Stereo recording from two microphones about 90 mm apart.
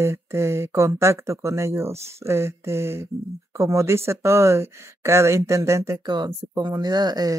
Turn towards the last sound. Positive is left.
turn(degrees=-50)  # may be behind; listen again after turning